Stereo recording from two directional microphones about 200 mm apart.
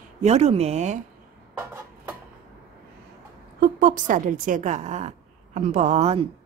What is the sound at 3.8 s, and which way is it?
A woman's voice, 40° right (ahead or behind).